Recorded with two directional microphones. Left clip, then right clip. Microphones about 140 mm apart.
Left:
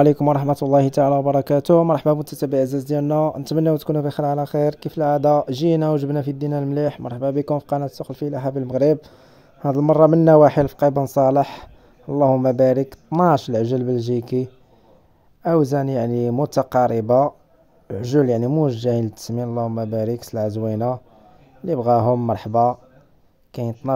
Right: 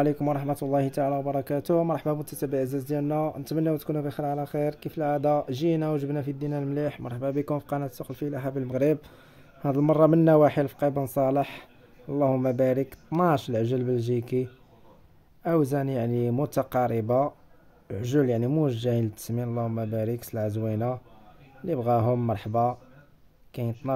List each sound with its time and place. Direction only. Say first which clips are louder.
0.0 s speech: left 10 dB; 45° left (ahead or behind); by 23.9 s 25° left (ahead or behind)